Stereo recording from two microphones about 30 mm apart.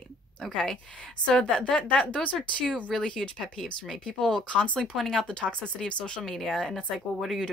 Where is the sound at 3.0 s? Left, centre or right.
Left.